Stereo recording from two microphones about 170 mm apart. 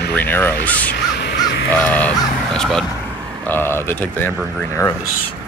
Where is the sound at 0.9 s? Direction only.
75° left (ahead or behind).